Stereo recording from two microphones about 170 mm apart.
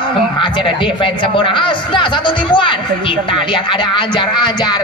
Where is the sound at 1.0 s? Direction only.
30° left (ahead or behind).